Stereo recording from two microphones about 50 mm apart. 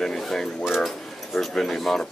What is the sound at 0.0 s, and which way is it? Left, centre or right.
Mechanisms, centre.